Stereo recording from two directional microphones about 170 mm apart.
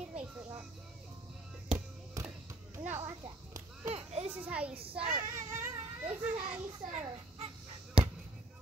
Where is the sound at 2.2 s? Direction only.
20° right (ahead or behind).